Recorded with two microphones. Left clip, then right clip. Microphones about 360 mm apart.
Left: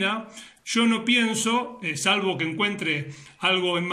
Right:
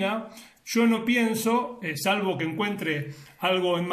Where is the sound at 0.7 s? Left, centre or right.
Centre.